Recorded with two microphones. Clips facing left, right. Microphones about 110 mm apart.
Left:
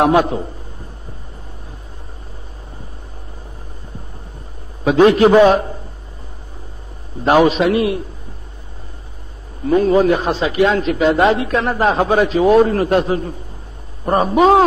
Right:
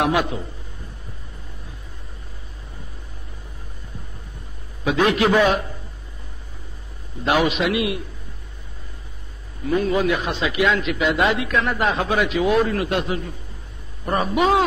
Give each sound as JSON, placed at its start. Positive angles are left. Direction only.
{"t": 0.0, "sound": "a man's voice", "side_deg": 35}
{"t": 4.8, "sound": "a man's voice", "side_deg": 35}
{"t": 7.2, "sound": "a man's voice", "side_deg": 35}
{"t": 9.7, "sound": "a man's voice", "side_deg": 35}